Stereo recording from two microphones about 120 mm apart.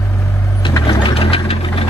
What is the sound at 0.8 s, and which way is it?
Sewing machine, 30° left (ahead or behind).